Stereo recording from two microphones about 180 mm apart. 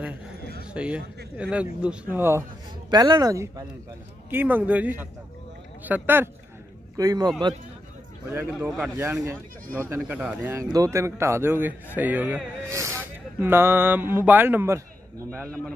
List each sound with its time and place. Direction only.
0.7 s speech: 5° right (ahead or behind)
8.5 s speech: 5° right (ahead or behind)